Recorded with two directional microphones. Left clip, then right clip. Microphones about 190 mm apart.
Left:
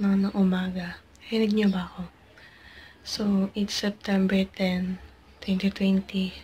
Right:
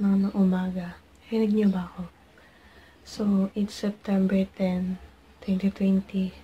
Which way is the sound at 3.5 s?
15° right (ahead or behind).